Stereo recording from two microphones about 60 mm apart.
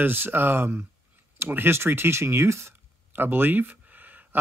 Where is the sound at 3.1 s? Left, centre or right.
Right.